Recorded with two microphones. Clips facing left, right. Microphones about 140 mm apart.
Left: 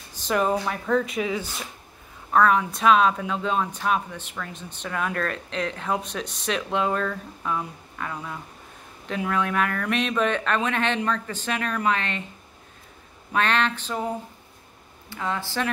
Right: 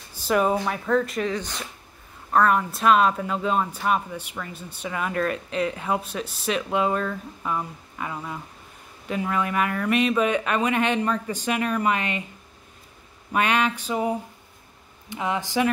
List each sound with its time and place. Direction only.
0.1 s speech: 5° right (ahead or behind)
13.3 s speech: 10° right (ahead or behind)